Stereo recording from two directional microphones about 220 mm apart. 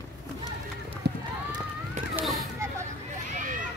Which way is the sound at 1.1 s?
50° right (ahead or behind).